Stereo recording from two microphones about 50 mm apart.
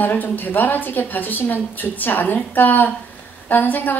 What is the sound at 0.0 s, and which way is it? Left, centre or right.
A woman's voice, left.